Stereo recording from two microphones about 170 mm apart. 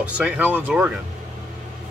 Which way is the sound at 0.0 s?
5° right (ahead or behind).